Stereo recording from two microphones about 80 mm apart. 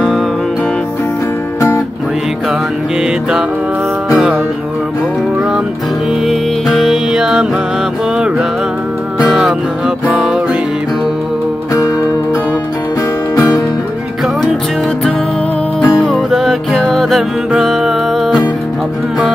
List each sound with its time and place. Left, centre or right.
3.0 s music: centre
6.2 s music: centre
9.3 s music: centre
13.4 s music: left
15.8 s music: centre
16.2 s music: centre